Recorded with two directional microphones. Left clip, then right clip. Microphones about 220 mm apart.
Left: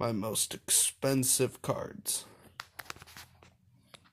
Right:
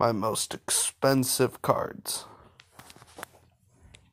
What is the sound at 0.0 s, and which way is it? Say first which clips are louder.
Speech: right 8 dB; 15° right (ahead or behind).